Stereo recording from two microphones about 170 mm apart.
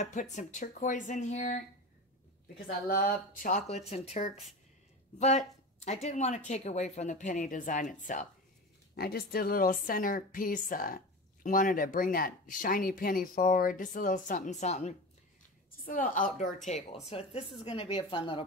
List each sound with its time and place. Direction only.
0.0 s speech: 45° left (ahead or behind)
2.6 s speech: 55° left (ahead or behind)
8.9 s a woman's voice: 65° left (ahead or behind); by 15.0 s 40° left (ahead or behind)
15.8 s speech: 50° left (ahead or behind)
17.1 s a woman's voice: 35° left (ahead or behind)